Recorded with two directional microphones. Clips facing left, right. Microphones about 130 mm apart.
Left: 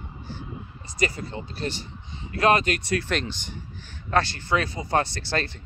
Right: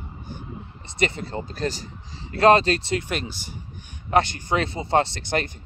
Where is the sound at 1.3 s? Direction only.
40° right (ahead or behind).